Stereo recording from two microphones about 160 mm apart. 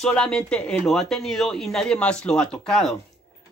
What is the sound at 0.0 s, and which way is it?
Speech, 5° left (ahead or behind).